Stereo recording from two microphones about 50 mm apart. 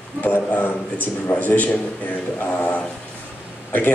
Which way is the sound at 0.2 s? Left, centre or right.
Left.